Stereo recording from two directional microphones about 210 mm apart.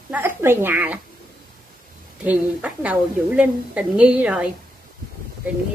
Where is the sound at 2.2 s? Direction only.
5° right (ahead or behind).